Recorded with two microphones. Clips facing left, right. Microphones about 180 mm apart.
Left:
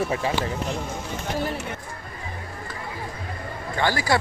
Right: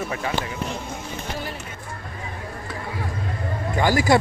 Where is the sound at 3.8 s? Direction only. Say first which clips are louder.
Right 4 dB; 15° right (ahead or behind).